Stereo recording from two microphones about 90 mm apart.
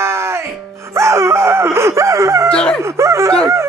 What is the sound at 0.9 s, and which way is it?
Speech, 30° right (ahead or behind).